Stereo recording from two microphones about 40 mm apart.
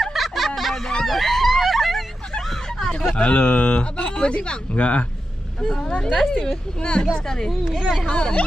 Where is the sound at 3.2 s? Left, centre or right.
Left.